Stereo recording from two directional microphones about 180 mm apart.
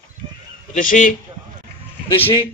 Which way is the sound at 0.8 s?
45° left (ahead or behind).